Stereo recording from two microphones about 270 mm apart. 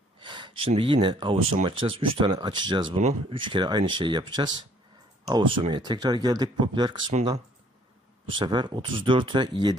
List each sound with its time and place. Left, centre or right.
0.2 s speech: centre
8.3 s speech: centre